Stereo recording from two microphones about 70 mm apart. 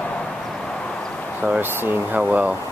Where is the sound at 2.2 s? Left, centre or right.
Right.